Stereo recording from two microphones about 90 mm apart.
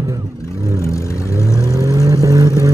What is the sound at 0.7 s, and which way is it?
Vehicle, 35° left (ahead or behind).